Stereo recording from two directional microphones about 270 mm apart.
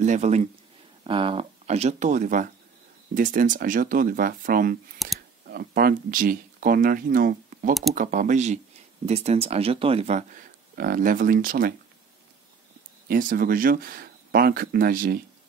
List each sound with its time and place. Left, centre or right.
0.0 s speech: right
5.0 s speech: centre
5.5 s speech: right
13.1 s speech: right